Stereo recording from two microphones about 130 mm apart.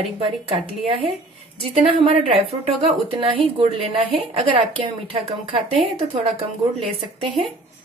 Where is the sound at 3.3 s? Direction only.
45° right (ahead or behind).